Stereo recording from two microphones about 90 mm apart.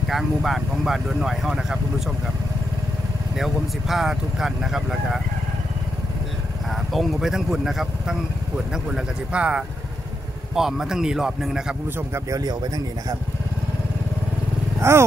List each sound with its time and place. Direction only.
0.1 s speech: centre (ahead or behind)
3.3 s speech: centre (ahead or behind)
6.9 s speech: centre (ahead or behind)
12.1 s speech: 40° right (ahead or behind)
14.8 s speech: 30° right (ahead or behind)